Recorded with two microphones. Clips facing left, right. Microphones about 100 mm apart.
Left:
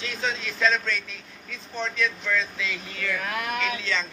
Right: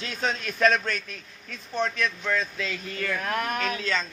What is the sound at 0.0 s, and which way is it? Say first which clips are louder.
A man's voice: right 1 dB; 50° right (ahead or behind).